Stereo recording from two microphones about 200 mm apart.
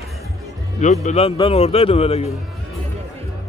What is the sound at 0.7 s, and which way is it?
A man's voice, 35° left (ahead or behind).